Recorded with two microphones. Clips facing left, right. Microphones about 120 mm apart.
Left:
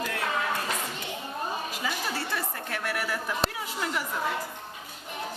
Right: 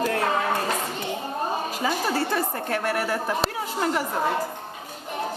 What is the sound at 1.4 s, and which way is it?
A woman's voice, 40° right (ahead or behind).